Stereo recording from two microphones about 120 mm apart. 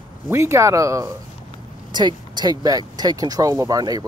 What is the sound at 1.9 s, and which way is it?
Speech, 35° right (ahead or behind).